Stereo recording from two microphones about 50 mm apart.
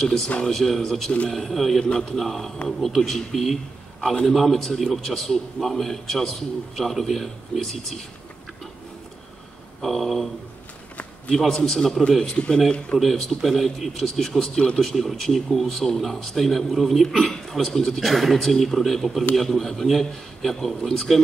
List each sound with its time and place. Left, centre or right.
0.0 s a man's voice: centre
1.8 s a man's voice: centre
9.8 s a man's voice: centre
11.3 s a man's voice: centre
13.0 s a man's voice: centre